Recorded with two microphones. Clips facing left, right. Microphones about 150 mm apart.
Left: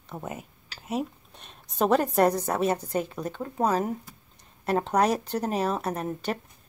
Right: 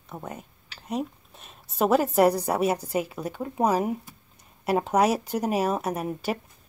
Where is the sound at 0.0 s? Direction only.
Centre (ahead or behind).